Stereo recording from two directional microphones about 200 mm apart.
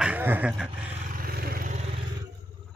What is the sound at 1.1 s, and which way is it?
Vehicle, 45° right (ahead or behind).